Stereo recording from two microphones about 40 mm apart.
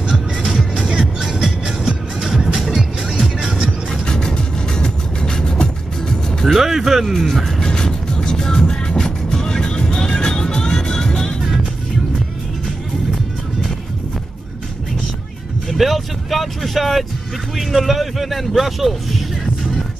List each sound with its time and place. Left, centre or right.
0.1 s music: centre
0.7 s music: centre
3.9 s vehicle: centre
6.4 s speech: centre
7.1 s speech: centre
7.6 s music: centre
15.7 s vehicle: centre
17.6 s speech: centre